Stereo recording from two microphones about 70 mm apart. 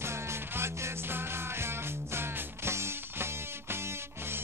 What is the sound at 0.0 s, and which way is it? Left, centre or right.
Music, right.